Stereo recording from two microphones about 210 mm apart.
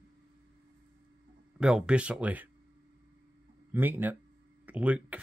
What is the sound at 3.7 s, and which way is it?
Speech, 10° right (ahead or behind).